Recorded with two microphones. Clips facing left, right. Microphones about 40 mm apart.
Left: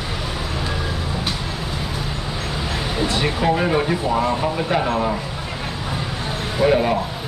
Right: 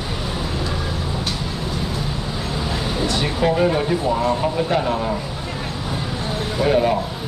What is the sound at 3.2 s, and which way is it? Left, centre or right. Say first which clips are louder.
Speech: right 1 dB; centre.